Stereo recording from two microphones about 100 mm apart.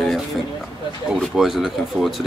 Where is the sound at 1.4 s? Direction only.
5° right (ahead or behind).